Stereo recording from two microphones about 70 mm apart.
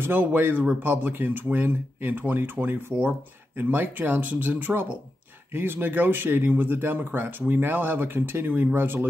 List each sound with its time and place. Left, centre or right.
0.0 s speech: right